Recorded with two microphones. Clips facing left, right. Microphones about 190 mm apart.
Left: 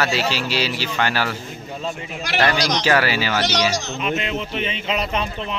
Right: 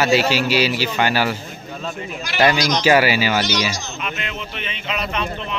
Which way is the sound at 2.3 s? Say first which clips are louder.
Right 1 dB; 75° left (ahead or behind).